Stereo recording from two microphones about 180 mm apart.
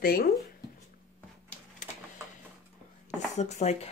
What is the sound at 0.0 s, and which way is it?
Speech, 55° left (ahead or behind).